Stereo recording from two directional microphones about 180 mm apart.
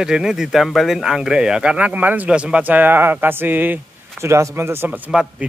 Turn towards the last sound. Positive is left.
turn(degrees=-5)  # may be behind; listen again after turning